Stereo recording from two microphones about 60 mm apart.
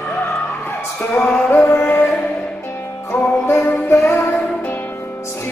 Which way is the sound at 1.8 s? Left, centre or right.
Left.